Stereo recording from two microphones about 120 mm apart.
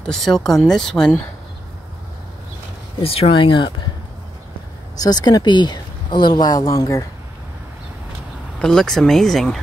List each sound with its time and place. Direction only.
0.0 s speech: 5° left (ahead or behind)
3.0 s speech: 50° left (ahead or behind)
5.0 s speech: 35° left (ahead or behind)
8.5 s speech: 5° left (ahead or behind)